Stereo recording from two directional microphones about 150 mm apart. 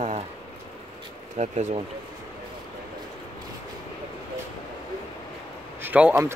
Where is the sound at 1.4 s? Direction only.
50° right (ahead or behind).